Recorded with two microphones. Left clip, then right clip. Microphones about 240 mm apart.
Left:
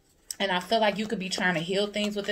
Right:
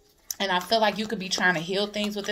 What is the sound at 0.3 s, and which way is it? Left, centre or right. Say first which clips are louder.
Speech: right 2 dB; centre.